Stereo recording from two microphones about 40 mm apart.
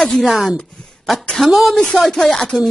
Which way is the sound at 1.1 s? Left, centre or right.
Centre.